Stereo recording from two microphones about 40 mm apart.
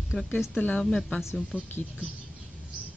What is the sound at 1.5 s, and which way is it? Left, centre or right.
Speech, left.